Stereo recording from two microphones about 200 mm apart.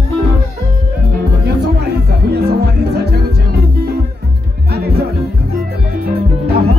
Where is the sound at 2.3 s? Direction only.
55° right (ahead or behind).